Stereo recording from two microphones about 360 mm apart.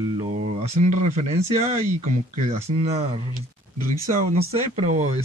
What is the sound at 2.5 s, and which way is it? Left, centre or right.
Speech, centre.